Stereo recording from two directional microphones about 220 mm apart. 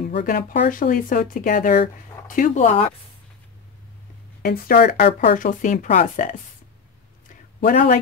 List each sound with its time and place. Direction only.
0.0 s speech: 40° left (ahead or behind)
4.4 s speech: 40° left (ahead or behind)
7.2 s a sound: 35° left (ahead or behind)